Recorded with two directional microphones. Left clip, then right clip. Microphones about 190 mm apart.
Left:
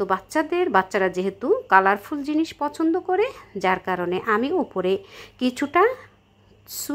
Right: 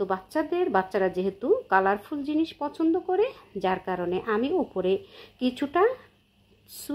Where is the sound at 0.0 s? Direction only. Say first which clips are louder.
Left 5 dB; 20° left (ahead or behind).